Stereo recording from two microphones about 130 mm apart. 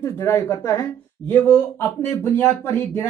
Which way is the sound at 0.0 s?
20° left (ahead or behind).